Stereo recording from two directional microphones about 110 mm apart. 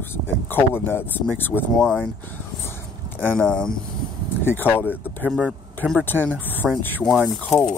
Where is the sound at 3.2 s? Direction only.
15° left (ahead or behind).